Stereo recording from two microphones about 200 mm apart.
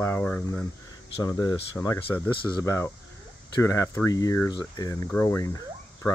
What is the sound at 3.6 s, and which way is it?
Speech, 15° left (ahead or behind).